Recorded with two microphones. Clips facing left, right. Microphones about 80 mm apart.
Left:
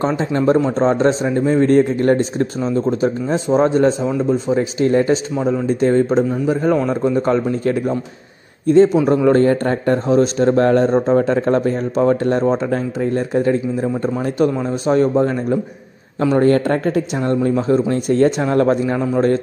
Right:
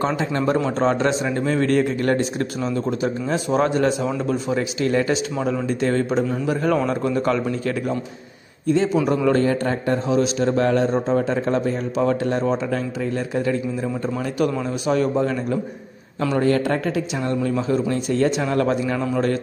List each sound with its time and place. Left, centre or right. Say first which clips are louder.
0.0 s a man's voice: left 4 dB; left
8.6 s a man's voice: left 8 dB; left
9.0 s a man's voice: left 5 dB; left
16.3 s a man's voice: left 5 dB; left